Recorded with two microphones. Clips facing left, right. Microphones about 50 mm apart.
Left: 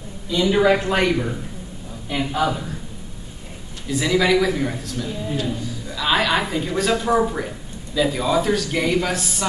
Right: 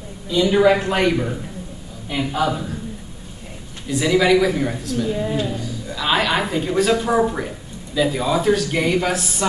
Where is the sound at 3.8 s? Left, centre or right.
Centre.